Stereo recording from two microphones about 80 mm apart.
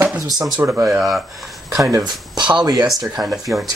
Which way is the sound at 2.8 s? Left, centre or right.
Centre.